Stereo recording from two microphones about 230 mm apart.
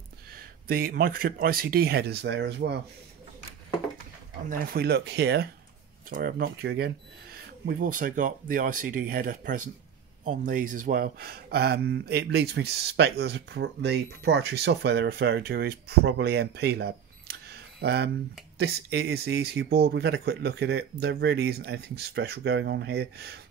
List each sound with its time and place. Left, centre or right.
0.3 s speech: right
4.5 s speech: right